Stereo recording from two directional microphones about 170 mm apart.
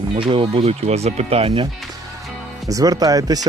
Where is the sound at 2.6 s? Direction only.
20° right (ahead or behind).